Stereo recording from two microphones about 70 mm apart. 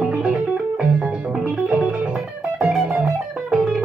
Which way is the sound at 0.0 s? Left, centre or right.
Centre.